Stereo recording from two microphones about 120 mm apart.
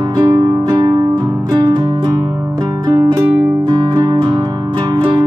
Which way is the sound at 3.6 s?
35° right (ahead or behind).